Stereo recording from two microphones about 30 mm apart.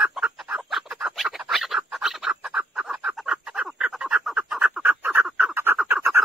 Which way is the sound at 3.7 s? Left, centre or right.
Right.